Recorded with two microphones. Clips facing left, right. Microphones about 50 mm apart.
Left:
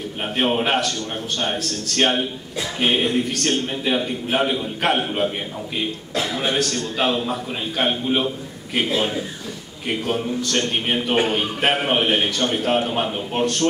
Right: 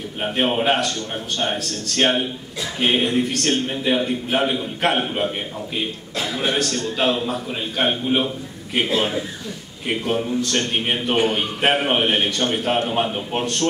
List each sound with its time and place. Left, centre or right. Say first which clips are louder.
0.2 s a man's voice: right 1 dB; centre
6.5 s a man's voice: even; centre
10.4 s a man's voice: even; centre